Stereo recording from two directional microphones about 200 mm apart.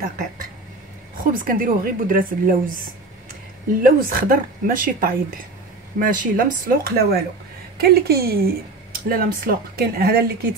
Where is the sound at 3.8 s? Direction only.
45° right (ahead or behind).